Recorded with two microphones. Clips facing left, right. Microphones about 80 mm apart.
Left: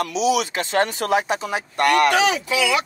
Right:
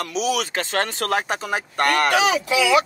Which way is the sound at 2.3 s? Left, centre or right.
Centre.